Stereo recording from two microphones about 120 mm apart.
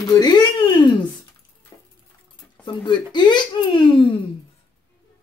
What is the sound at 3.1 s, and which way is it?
Speech, 40° left (ahead or behind).